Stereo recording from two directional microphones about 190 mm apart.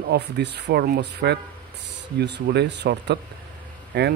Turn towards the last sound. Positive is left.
turn(degrees=-60)  # may be behind; listen again after turning